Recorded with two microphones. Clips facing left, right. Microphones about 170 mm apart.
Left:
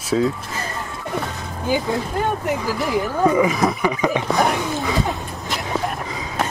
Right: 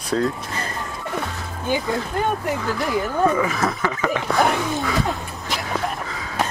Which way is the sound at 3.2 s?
15° left (ahead or behind).